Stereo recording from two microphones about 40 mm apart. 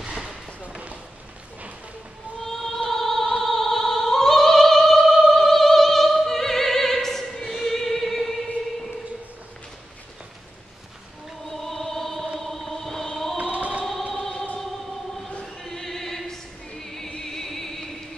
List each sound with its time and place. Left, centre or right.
0.0 s a sound: centre
2.4 s opera: centre
11.5 s choir: centre
12.4 s music: centre
13.4 s music: right
14.3 s music: left
15.6 s music: centre